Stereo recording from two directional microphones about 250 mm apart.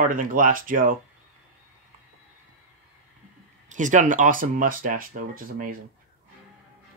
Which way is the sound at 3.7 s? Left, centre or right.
Right.